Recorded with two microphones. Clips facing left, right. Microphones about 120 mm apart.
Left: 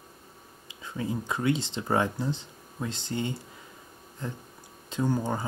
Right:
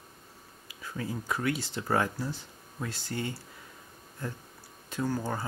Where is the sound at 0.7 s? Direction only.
25° left (ahead or behind).